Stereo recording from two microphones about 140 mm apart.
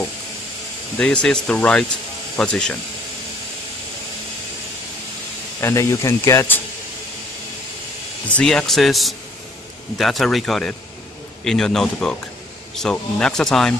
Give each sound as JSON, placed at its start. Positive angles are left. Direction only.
{"t": 0.9, "sound": "speech", "side_deg": 10}
{"t": 5.6, "sound": "speech", "side_deg": 20}
{"t": 8.4, "sound": "speech", "side_deg": 5}